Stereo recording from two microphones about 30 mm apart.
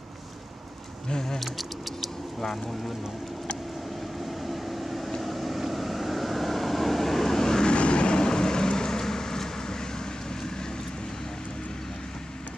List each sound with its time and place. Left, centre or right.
1.0 s speech: left
1.4 s a sound: centre
4.3 s vehicle: centre
7.6 s vehicle: left